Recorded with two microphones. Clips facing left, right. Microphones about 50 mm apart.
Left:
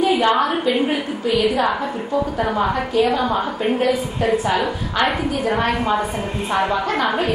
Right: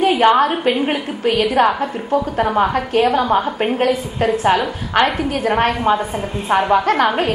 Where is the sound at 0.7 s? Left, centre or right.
Right.